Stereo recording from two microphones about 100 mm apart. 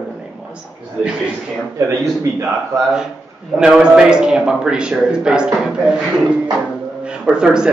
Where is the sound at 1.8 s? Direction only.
25° right (ahead or behind).